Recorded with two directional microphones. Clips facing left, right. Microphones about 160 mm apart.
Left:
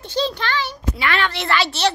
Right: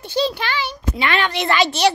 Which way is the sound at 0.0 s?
10° right (ahead or behind).